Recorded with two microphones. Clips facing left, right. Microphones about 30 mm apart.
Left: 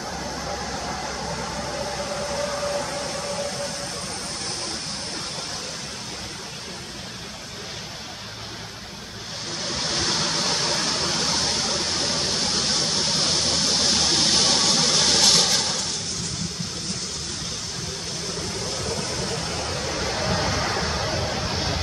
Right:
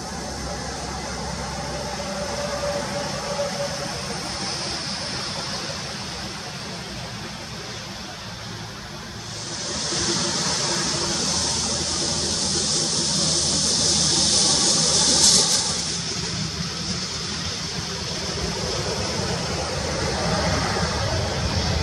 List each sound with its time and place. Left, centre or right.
0.1 s vehicle: centre
9.7 s a sound: centre
18.2 s vehicle: centre